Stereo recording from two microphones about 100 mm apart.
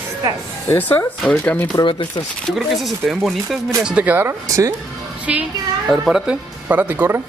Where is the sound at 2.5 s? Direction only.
Centre (ahead or behind).